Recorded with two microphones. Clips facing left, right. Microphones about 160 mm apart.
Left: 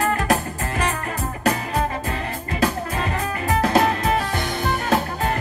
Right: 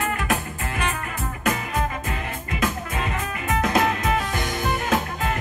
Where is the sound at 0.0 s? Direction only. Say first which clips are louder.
Left 5 dB; 40° left (ahead or behind).